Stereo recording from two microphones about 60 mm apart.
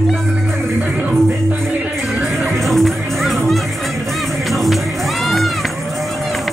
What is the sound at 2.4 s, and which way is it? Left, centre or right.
Music, centre.